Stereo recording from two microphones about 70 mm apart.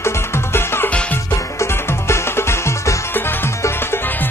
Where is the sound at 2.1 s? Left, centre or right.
Left.